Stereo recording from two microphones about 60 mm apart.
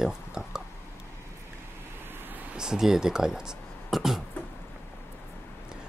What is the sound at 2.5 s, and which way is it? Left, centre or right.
Speech, centre.